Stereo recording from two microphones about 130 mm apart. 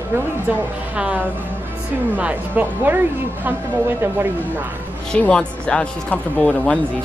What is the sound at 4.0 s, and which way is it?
Speech, 15° right (ahead or behind).